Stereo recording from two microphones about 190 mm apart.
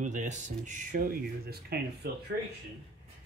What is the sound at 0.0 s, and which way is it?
Speech, 40° right (ahead or behind).